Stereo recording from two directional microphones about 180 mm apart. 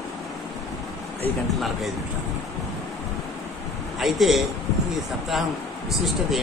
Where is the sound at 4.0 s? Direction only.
Centre (ahead or behind).